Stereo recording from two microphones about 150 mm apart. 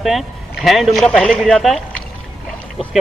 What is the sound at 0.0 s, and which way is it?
A man's voice, centre (ahead or behind).